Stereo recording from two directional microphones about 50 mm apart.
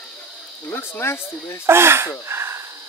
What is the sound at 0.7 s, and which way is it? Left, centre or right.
Speech, left.